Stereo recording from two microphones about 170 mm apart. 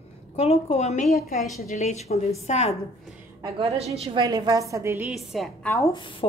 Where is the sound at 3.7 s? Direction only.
35° right (ahead or behind); by 5.1 s 15° right (ahead or behind).